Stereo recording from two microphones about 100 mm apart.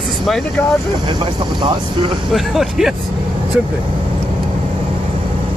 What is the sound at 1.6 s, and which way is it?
Speech, 55° right (ahead or behind).